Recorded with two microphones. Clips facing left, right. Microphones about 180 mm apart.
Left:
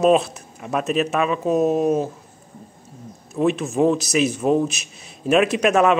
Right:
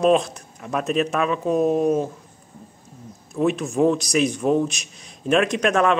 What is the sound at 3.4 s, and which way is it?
A man's voice, centre (ahead or behind).